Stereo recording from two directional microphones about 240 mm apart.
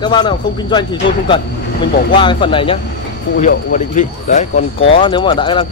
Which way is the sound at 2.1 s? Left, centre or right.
Centre.